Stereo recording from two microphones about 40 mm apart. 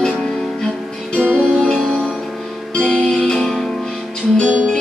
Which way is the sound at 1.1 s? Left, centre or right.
Left.